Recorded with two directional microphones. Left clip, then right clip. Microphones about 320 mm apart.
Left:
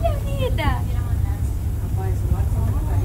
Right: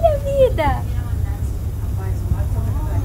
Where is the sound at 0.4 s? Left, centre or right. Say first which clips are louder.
Right 10 dB; right.